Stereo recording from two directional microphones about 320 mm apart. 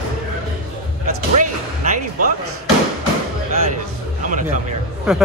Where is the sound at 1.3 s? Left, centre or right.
Right.